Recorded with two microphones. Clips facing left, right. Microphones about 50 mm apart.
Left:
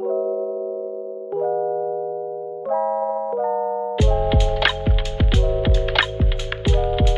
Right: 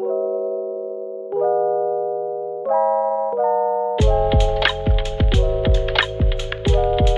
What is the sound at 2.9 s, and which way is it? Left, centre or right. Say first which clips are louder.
Music: right 3 dB; centre.